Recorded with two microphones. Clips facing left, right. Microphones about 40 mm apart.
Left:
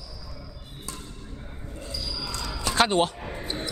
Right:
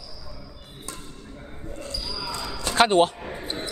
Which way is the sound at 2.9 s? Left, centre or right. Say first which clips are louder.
Right 4 dB; right.